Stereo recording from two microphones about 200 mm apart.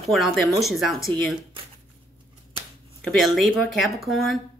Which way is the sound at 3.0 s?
Centre (ahead or behind).